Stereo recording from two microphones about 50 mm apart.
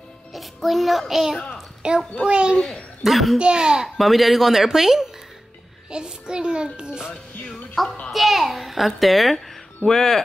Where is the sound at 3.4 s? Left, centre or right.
Centre.